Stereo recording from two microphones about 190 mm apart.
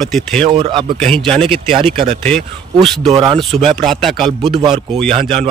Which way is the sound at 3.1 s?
25° right (ahead or behind).